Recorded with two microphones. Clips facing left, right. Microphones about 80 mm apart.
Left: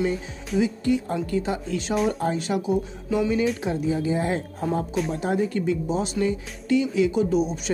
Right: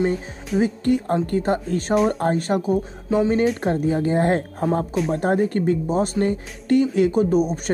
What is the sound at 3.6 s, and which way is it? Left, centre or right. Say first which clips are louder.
Speech: right 4 dB; right.